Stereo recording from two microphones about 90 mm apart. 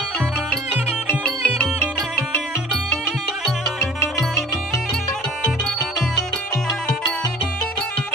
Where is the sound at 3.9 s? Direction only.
35° left (ahead or behind).